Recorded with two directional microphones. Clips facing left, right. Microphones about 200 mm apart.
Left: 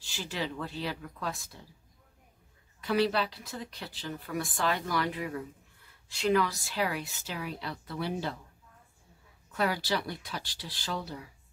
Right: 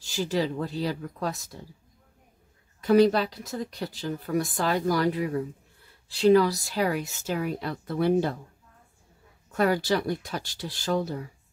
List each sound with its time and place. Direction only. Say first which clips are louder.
0.0 s a woman's voice: right 9 dB; 40° right (ahead or behind)
2.8 s a woman's voice: right 8 dB; 45° right (ahead or behind)
9.5 s a woman's voice: right 7 dB; 45° right (ahead or behind)